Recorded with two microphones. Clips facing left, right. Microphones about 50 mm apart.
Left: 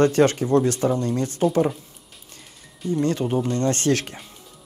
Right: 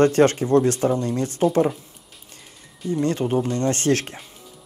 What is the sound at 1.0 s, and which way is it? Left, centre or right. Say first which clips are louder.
Speech: even; right.